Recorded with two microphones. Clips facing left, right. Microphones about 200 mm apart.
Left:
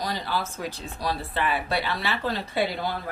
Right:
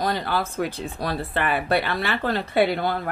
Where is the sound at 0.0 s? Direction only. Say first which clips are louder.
Right 5 dB; 55° right (ahead or behind).